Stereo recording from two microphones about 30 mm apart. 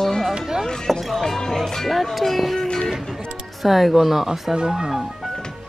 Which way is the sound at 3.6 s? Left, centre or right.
Centre.